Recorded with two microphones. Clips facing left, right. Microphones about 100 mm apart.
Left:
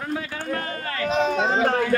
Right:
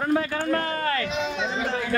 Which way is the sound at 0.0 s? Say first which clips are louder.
Right 5 dB; 50° right (ahead or behind).